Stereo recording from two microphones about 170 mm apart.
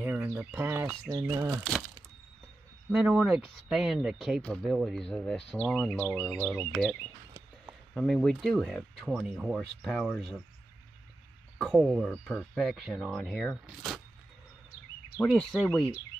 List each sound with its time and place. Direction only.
0.0 s speech: 10° right (ahead or behind)
1.1 s speech: 20° right (ahead or behind)
2.9 s speech: 5° right (ahead or behind)
7.9 s speech: 5° left (ahead or behind)
11.5 s speech: centre (ahead or behind)
15.1 s speech: 5° left (ahead or behind)